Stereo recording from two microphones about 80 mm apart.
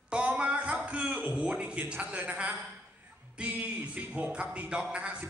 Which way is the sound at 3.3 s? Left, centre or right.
Centre.